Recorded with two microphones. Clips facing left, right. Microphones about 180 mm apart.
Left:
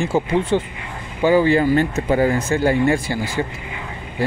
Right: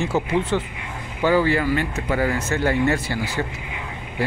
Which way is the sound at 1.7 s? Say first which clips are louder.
Left 6 dB; 40° left (ahead or behind).